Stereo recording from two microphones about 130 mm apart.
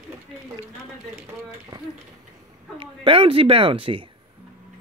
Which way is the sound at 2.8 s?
45° right (ahead or behind).